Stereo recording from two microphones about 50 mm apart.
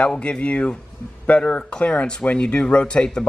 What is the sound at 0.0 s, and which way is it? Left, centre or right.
Speech, left.